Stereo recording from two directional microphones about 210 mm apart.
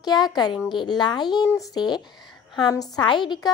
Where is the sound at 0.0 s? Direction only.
20° left (ahead or behind).